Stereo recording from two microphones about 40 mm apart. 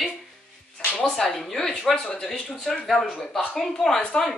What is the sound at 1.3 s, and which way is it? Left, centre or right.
Speech, centre.